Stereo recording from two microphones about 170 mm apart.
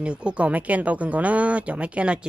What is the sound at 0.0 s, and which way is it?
Speech, 5° right (ahead or behind).